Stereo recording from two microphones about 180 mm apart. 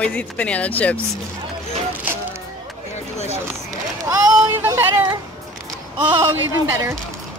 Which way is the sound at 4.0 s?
15° right (ahead or behind).